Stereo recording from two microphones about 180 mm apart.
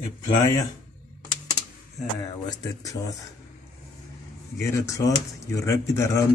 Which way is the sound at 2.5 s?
20° left (ahead or behind).